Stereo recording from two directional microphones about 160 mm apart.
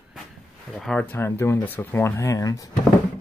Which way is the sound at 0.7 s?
Centre (ahead or behind).